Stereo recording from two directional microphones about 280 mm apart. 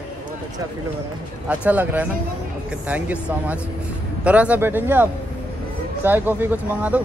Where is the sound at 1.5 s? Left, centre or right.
Centre.